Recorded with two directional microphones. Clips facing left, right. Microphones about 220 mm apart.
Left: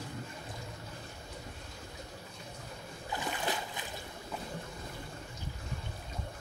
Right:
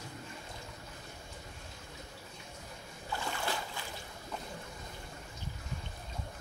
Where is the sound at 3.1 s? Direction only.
15° left (ahead or behind).